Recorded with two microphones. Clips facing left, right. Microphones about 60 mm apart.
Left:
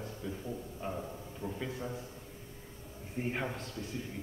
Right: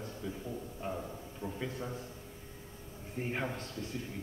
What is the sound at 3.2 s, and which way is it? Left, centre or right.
Speech, centre.